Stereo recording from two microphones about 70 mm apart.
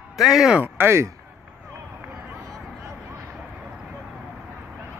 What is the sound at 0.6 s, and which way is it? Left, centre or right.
Speech, right.